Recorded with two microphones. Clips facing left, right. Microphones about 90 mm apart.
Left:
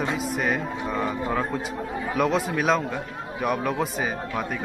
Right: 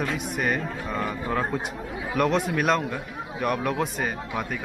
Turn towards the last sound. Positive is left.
turn(degrees=0)  # may be behind; listen again after turning